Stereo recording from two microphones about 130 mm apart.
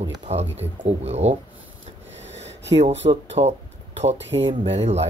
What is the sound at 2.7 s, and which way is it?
Speech, 55° right (ahead or behind).